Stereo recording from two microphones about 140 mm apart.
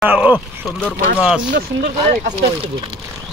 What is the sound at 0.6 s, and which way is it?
Speech, 5° left (ahead or behind).